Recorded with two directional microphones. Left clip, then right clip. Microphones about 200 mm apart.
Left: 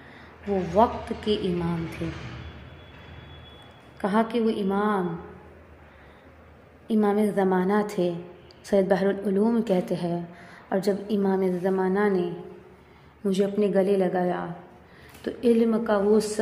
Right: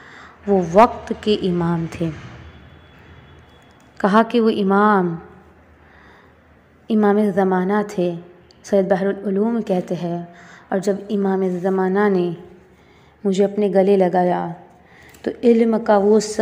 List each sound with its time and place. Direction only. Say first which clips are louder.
0.2 s a woman's voice: right 9 dB; 25° right (ahead or behind)
4.0 s a woman's voice: right 9 dB; 20° right (ahead or behind)
6.9 s a woman's voice: right 7 dB; 20° right (ahead or behind)